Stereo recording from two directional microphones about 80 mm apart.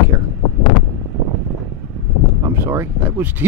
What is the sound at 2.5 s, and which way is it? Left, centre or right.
Speech, right.